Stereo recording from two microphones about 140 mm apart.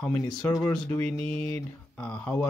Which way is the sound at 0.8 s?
15° left (ahead or behind).